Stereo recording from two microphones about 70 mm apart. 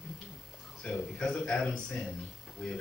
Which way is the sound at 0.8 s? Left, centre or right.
Centre.